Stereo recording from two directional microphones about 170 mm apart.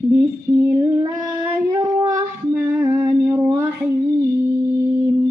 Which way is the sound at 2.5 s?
10° right (ahead or behind).